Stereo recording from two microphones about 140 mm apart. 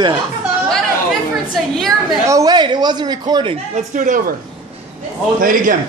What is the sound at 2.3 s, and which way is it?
Speech, 25° right (ahead or behind).